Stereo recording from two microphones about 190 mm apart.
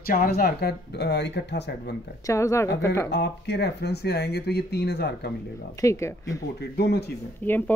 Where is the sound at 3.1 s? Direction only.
65° left (ahead or behind).